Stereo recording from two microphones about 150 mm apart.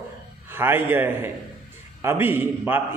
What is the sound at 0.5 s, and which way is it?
A man's voice, 15° right (ahead or behind).